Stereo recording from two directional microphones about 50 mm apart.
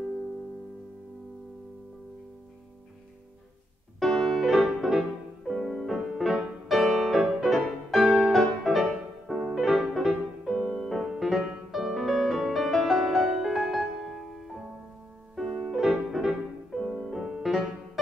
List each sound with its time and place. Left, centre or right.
4.0 s music: centre